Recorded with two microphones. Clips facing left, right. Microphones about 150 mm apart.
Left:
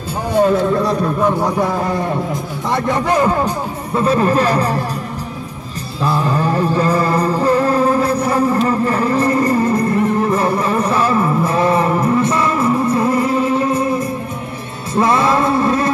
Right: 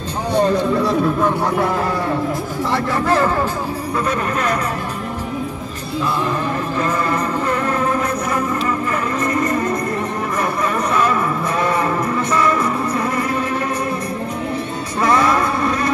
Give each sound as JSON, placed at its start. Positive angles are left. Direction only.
{"t": 0.4, "sound": "a man's voice", "side_deg": 0}
{"t": 2.7, "sound": "speech", "side_deg": 15}
{"t": 3.9, "sound": "speech", "side_deg": 30}
{"t": 6.3, "sound": "music", "side_deg": 35}
{"t": 15.0, "sound": "a sound", "side_deg": 25}